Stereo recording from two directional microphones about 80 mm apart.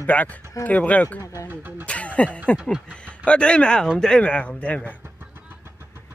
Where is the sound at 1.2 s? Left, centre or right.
Left.